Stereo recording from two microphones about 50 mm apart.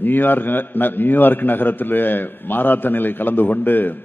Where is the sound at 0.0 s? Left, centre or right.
Left.